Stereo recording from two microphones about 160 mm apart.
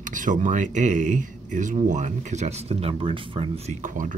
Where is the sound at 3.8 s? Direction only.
55° right (ahead or behind).